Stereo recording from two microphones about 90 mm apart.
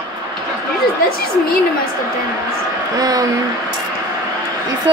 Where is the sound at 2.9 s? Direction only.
45° right (ahead or behind).